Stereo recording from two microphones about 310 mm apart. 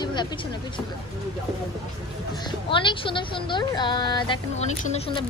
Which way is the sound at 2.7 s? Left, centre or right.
Centre.